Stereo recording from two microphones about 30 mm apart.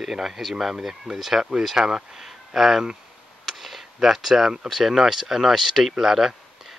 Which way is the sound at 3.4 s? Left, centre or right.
Centre.